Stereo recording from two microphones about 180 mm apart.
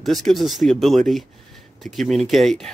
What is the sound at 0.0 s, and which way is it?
Speech, centre (ahead or behind).